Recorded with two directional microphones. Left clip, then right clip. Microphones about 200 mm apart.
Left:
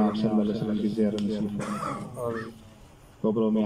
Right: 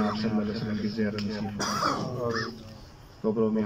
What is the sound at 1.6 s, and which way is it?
Speech, 40° right (ahead or behind).